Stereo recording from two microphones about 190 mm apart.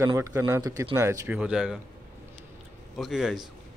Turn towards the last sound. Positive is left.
turn(degrees=0)  # may be behind; listen again after turning